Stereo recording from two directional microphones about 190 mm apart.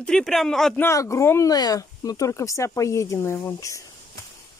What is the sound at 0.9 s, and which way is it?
Speech, 15° left (ahead or behind).